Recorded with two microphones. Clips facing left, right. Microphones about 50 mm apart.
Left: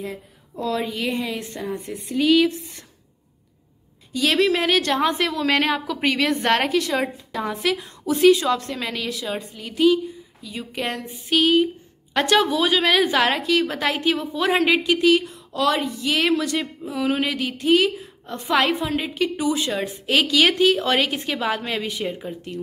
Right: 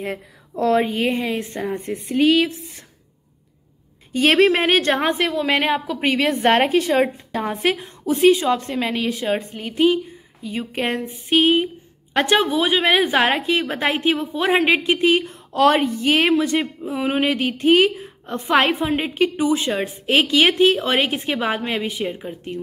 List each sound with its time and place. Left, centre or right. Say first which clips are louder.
0.0 s speech: right 4 dB; right
0.7 s speech: right 5 dB; right
2.3 s a woman's voice: left 1 dB; centre
4.1 s speech: right 4 dB; right
5.1 s a woman's voice: right 1 dB; centre